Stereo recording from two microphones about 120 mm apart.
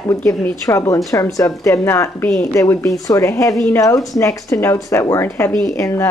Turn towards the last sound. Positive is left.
turn(degrees=25)  # may be behind; listen again after turning